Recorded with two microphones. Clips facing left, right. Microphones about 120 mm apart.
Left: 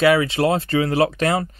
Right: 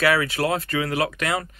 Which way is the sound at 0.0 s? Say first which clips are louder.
Left 5 dB; 25° left (ahead or behind).